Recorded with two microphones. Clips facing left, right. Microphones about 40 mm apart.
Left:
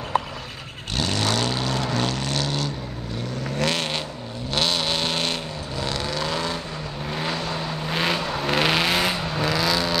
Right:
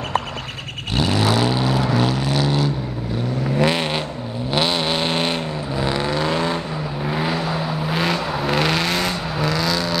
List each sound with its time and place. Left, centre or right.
0.9 s vehicle: centre
7.1 s vehicle: centre